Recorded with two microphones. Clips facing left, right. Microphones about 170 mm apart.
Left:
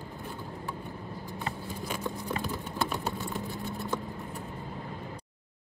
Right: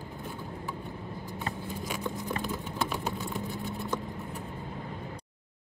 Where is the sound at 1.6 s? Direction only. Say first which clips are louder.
Even; centre (ahead or behind).